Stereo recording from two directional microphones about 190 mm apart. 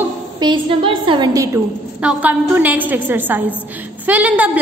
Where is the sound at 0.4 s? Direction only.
25° right (ahead or behind).